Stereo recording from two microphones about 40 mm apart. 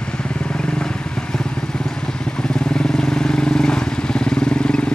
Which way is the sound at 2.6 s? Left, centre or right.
Centre.